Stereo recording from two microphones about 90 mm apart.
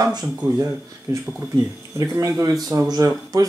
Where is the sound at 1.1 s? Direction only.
35° right (ahead or behind).